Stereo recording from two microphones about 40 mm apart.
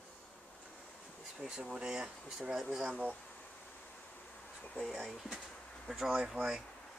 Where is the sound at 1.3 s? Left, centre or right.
Right.